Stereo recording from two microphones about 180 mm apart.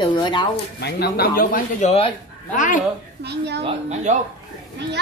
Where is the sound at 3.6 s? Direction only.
40° right (ahead or behind).